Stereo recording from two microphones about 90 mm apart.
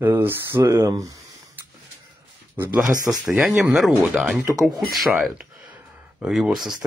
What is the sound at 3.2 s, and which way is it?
Speech, centre (ahead or behind).